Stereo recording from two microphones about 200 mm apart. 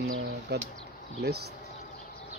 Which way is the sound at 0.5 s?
55° right (ahead or behind).